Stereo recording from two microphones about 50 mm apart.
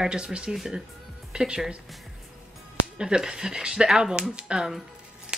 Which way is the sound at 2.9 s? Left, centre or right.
Centre.